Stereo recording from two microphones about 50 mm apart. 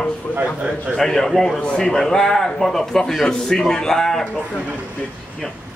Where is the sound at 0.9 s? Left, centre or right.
Centre.